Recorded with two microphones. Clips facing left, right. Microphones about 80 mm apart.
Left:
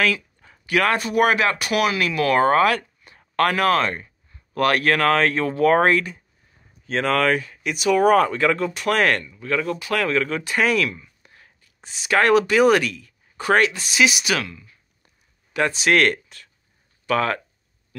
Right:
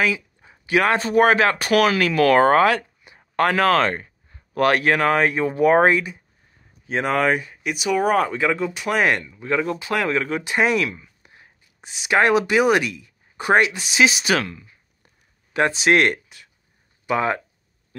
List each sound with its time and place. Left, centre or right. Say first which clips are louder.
0.0 s speech: even; centre
3.0 s speech: even; centre